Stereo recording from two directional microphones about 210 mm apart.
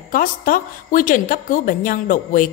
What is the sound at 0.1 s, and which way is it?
A woman's voice, 40° left (ahead or behind).